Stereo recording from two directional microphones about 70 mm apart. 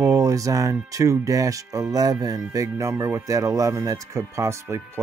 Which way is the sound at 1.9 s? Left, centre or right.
Right.